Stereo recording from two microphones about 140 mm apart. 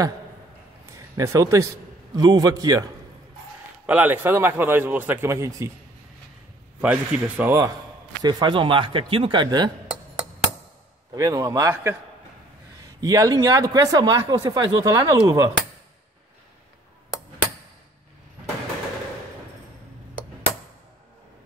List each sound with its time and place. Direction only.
0.9 s speech: 20° right (ahead or behind)
3.8 s a man's voice: 10° right (ahead or behind)
6.8 s a man's voice: 10° right (ahead or behind)
8.2 s speech: 30° right (ahead or behind)
11.1 s speech: 25° right (ahead or behind)
13.0 s speech: 25° right (ahead or behind)